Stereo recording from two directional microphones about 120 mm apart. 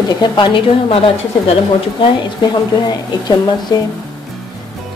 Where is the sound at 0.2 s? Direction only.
45° left (ahead or behind).